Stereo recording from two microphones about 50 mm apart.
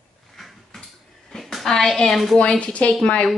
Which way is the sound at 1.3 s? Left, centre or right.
Centre.